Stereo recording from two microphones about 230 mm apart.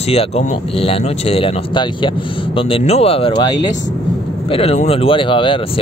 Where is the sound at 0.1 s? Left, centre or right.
Left.